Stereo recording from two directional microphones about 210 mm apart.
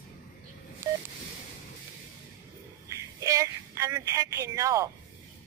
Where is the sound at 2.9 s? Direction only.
15° right (ahead or behind).